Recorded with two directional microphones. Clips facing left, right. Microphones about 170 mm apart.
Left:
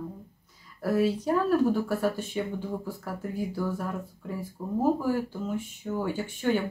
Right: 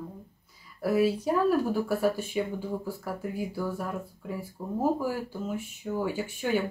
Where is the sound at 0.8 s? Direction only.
10° right (ahead or behind).